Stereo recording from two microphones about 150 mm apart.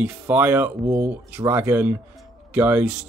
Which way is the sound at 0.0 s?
10° right (ahead or behind).